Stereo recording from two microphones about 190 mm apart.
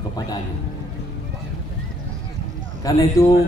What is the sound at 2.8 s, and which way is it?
Speech, 15° left (ahead or behind).